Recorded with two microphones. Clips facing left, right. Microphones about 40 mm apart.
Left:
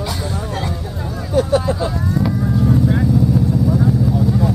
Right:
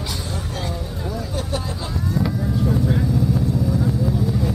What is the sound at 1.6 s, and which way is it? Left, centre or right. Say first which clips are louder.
Vehicle: left 10 dB; left.